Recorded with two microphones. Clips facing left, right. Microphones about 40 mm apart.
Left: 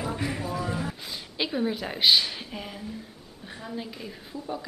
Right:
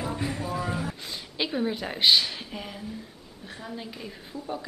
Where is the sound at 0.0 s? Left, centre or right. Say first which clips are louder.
Even; centre.